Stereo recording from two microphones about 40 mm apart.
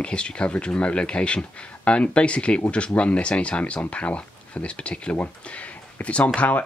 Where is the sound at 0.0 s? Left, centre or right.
Left.